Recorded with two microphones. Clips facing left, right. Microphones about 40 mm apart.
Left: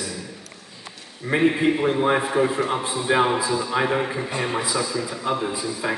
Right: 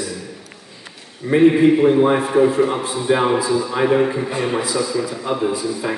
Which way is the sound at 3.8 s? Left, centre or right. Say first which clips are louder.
Right 6 dB; centre.